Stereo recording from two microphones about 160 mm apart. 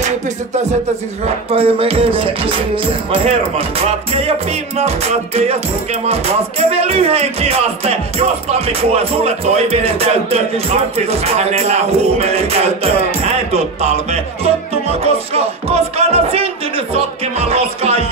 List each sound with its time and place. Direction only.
1.2 s music: 35° right (ahead or behind)
6.7 s music: 40° right (ahead or behind)